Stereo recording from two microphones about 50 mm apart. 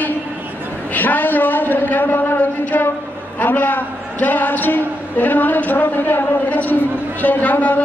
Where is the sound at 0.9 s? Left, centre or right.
Left.